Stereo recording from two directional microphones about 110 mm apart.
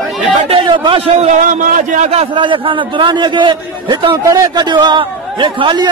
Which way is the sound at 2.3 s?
50° right (ahead or behind).